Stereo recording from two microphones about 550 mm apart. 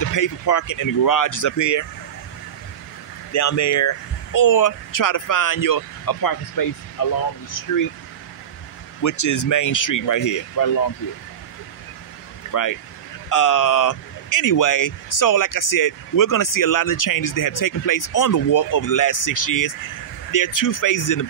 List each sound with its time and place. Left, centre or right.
0.0 s speech: left
3.3 s speech: left
9.0 s speech: left
12.4 s speech: left